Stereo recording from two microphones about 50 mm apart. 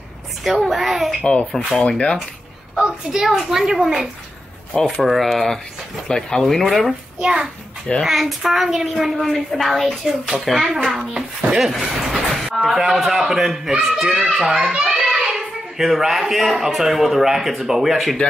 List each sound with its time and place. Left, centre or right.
0.4 s a child's voice: centre
1.2 s speech: left
3.1 s a man's voice: centre
7.2 s a child's voice: centre
8.0 s a child's voice: centre
11.0 s a man's voice: centre
11.7 s train: centre
12.6 s a man's voice: centre